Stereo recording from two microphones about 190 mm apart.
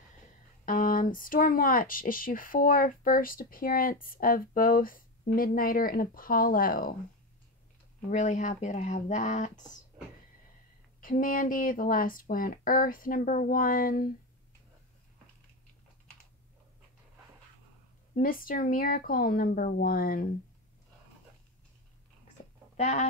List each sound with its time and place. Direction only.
0.7 s speech: 50° left (ahead or behind)
8.1 s speech: 40° left (ahead or behind)
11.0 s speech: 45° left (ahead or behind)
18.1 s speech: 45° left (ahead or behind)
22.4 s a sound: 40° left (ahead or behind)
22.8 s speech: 35° left (ahead or behind)